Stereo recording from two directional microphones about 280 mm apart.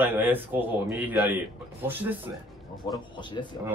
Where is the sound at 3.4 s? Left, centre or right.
Centre.